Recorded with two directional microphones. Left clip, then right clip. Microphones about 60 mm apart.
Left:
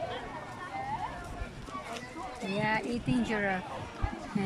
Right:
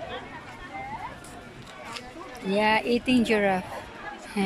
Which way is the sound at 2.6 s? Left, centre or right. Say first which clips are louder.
Right 9 dB; right.